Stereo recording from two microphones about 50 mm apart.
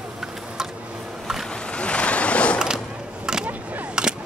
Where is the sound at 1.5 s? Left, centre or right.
Centre.